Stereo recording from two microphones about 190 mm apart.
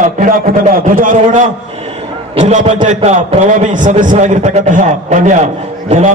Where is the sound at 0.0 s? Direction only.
45° right (ahead or behind).